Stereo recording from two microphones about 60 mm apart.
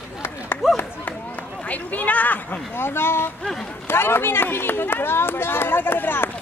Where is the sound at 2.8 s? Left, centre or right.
Left.